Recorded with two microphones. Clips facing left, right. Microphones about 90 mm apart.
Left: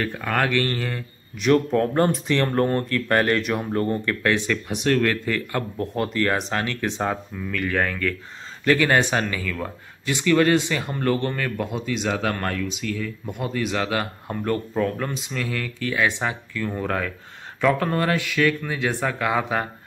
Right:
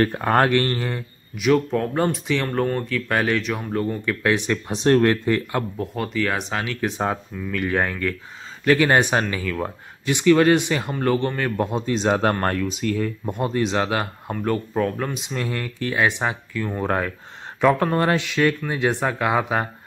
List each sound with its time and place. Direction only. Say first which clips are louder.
0.0 s speech: right 5 dB; 40° right (ahead or behind)
1.3 s speech: even; 5° right (ahead or behind)
4.6 s speech: right 5 dB; 30° right (ahead or behind)
5.9 s a man's voice: left 2 dB; centre (ahead or behind); by 14.0 s 25° right (ahead or behind)
14.4 s a man's voice: right 1 dB; 10° right (ahead or behind)
15.1 s speech: right 1 dB; 25° right (ahead or behind)